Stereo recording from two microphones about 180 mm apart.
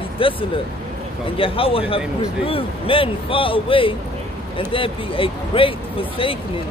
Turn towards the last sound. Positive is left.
turn(degrees=30)  # may be behind; listen again after turning